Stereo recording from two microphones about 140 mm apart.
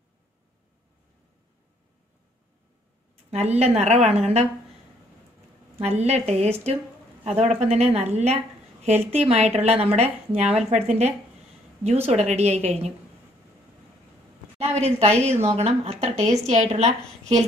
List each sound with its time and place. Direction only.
3.3 s speech: 50° right (ahead or behind)
5.8 s speech: 50° right (ahead or behind)
14.6 s speech: 50° right (ahead or behind)